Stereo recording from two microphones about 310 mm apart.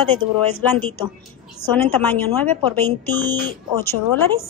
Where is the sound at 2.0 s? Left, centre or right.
Centre.